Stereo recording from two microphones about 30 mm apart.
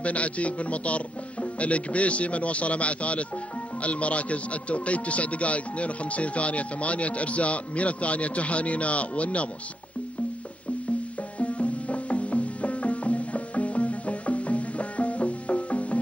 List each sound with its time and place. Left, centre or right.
0.0 s a man's voice: left
11.3 s music: left